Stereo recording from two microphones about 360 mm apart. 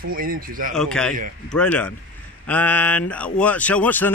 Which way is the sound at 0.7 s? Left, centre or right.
Centre.